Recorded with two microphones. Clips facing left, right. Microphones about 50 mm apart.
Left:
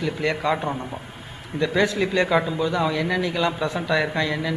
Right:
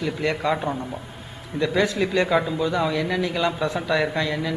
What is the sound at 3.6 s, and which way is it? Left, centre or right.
Speech, left.